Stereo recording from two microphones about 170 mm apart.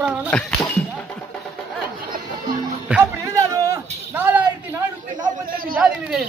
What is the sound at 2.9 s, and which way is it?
Speech, 10° right (ahead or behind).